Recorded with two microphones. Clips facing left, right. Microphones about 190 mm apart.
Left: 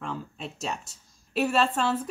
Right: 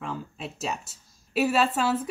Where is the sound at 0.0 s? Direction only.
5° right (ahead or behind).